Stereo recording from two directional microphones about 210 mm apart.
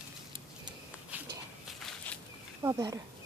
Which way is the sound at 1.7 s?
Centre (ahead or behind).